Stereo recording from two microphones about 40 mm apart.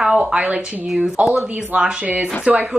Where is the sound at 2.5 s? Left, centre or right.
Right.